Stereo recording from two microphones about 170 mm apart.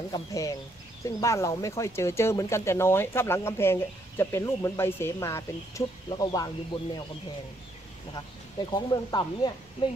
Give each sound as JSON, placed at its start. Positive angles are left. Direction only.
{"t": 0.1, "sound": "speech", "side_deg": 20}
{"t": 6.0, "sound": "speech", "side_deg": 25}
{"t": 8.7, "sound": "speech", "side_deg": 25}